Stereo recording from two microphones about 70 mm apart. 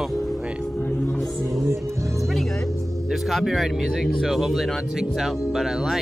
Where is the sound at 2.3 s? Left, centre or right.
Centre.